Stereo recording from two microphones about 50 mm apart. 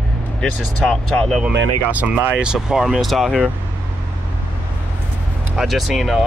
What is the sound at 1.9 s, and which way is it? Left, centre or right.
Speech, right.